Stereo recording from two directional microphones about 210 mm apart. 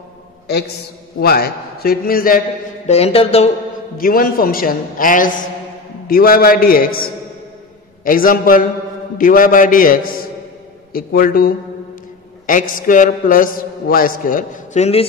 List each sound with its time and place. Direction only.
1.2 s a man's voice: 45° left (ahead or behind)
2.9 s speech: 30° left (ahead or behind)
4.0 s a man's voice: 45° left (ahead or behind)
8.0 s a man's voice: 40° left (ahead or behind)